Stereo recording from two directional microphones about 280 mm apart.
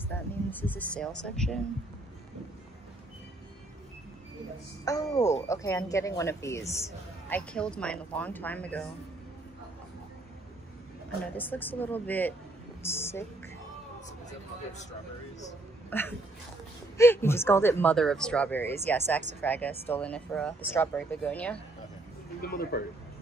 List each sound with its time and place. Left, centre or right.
0.1 s a sound: centre
1.2 s speech: centre
4.8 s speech: centre
11.3 s speech: centre
14.7 s speech: left
15.9 s speech: centre
22.4 s a man's voice: left